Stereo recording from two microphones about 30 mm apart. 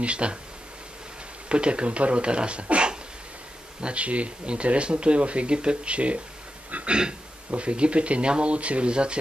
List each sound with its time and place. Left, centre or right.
0.0 s speech: right
1.5 s speech: right
6.9 s speech: right